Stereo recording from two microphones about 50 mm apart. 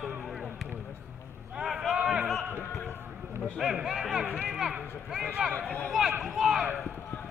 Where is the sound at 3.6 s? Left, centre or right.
Centre.